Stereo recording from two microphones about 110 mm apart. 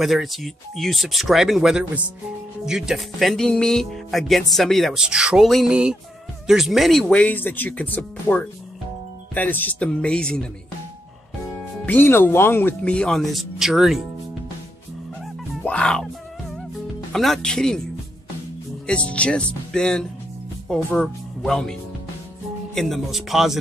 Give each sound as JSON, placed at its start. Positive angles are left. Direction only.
{"t": 0.0, "sound": "speech", "side_deg": 0}
{"t": 7.2, "sound": "speech", "side_deg": 15}
{"t": 11.8, "sound": "speech", "side_deg": 20}
{"t": 15.6, "sound": "music", "side_deg": 10}
{"t": 17.1, "sound": "speech", "side_deg": 5}
{"t": 18.9, "sound": "speech", "side_deg": 10}
{"t": 22.8, "sound": "speech", "side_deg": 0}